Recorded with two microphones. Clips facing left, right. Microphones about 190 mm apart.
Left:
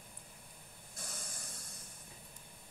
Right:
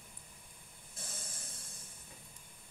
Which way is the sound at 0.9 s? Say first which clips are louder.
Left 1 dB; 25° right (ahead or behind).